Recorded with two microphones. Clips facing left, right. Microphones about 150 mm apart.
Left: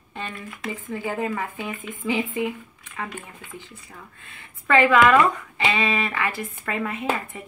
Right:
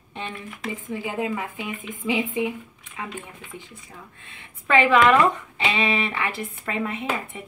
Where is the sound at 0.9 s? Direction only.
10° right (ahead or behind).